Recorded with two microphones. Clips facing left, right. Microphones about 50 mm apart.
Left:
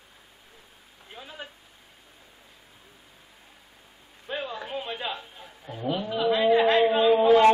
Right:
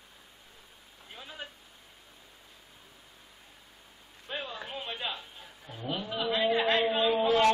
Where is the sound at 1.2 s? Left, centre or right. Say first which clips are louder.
Left 3 dB; centre.